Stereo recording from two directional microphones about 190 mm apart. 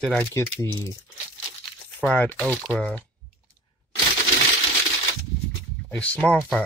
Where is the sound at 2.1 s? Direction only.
10° left (ahead or behind).